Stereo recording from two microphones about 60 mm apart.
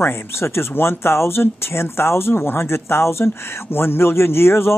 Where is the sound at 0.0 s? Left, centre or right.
Left.